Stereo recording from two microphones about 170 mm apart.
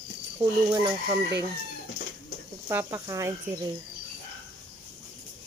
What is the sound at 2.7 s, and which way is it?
Speech, 15° right (ahead or behind).